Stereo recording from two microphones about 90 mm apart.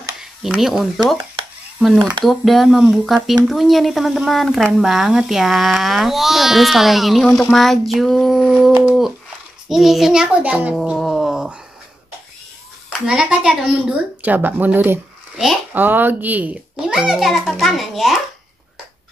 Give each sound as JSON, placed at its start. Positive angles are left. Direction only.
{"t": 0.2, "sound": "speech", "side_deg": -5}
{"t": 2.2, "sound": "speech", "side_deg": 0}
{"t": 11.0, "sound": "a sound", "side_deg": 0}
{"t": 13.0, "sound": "a child's voice", "side_deg": -10}